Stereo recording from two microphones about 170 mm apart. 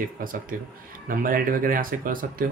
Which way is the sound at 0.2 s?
55° right (ahead or behind).